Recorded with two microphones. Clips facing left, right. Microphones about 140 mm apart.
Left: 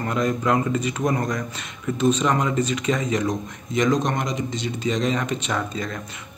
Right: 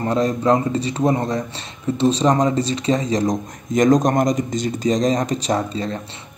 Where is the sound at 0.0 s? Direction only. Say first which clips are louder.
Right 4 dB; 35° right (ahead or behind).